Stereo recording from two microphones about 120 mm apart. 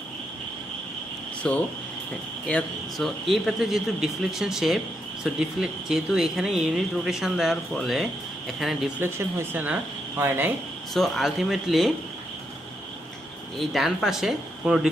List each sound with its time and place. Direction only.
1.5 s a man's voice: 5° left (ahead or behind)
9.0 s speech: 20° right (ahead or behind)
10.9 s a man's voice: centre (ahead or behind)
13.7 s a man's voice: centre (ahead or behind)